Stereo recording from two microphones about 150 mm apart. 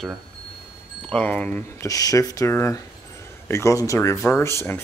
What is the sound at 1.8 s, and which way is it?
Speech, 25° left (ahead or behind).